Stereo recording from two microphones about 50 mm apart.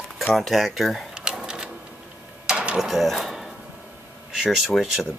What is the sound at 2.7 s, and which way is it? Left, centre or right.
Speech, centre.